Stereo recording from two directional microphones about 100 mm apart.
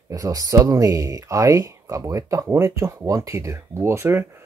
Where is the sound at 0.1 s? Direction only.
35° right (ahead or behind).